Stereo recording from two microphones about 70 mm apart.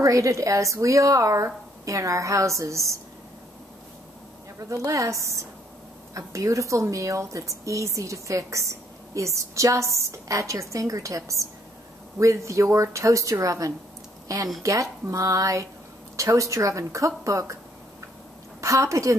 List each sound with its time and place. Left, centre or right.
0.0 s speech: right
4.6 s a woman's voice: right
18.6 s a woman's voice: right